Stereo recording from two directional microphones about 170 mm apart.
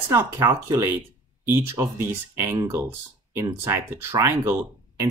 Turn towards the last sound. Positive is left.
turn(degrees=-15)  # may be behind; listen again after turning